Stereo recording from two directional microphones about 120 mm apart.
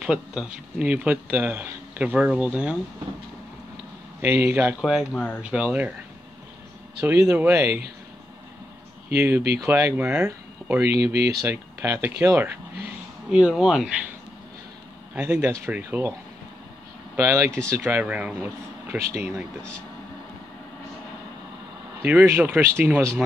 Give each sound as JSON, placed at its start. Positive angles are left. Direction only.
{"t": 0.0, "sound": "speech", "side_deg": -5}
{"t": 4.8, "sound": "speech", "side_deg": -5}
{"t": 7.0, "sound": "speech", "side_deg": -15}
{"t": 9.1, "sound": "speech", "side_deg": -20}
{"t": 13.3, "sound": "speech", "side_deg": -5}
{"t": 15.1, "sound": "speech", "side_deg": -20}
{"t": 17.2, "sound": "speech", "side_deg": -20}
{"t": 19.1, "sound": "speech", "side_deg": -20}
{"t": 22.0, "sound": "speech", "side_deg": -20}